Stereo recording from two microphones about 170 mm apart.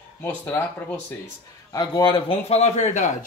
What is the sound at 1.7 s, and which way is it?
Speech, 25° left (ahead or behind).